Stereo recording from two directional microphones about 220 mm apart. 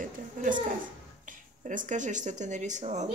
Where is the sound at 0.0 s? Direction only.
35° right (ahead or behind).